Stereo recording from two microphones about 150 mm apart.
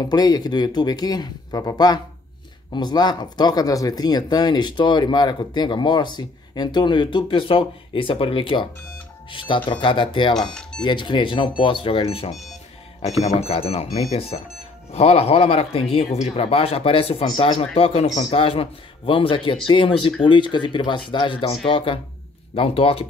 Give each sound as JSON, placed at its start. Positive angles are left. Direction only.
{"t": 0.0, "sound": "a man's voice", "side_deg": 25}
{"t": 10.3, "sound": "speech", "side_deg": 5}
{"t": 10.8, "sound": "a man's voice", "side_deg": 30}